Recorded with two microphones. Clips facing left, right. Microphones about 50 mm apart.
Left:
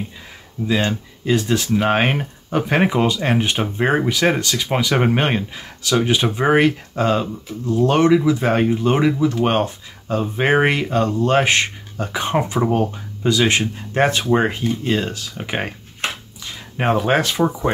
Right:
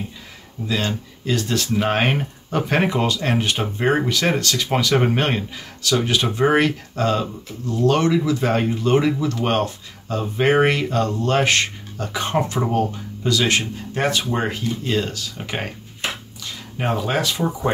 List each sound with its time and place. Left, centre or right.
0.7 s speech: centre
13.9 s speech: left
16.7 s speech: left